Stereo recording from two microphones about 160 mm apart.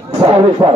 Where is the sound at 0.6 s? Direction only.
25° right (ahead or behind).